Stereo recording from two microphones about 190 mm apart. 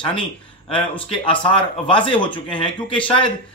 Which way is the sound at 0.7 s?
25° left (ahead or behind).